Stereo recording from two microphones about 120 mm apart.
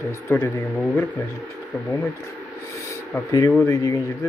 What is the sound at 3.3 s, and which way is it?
Speech, 25° left (ahead or behind).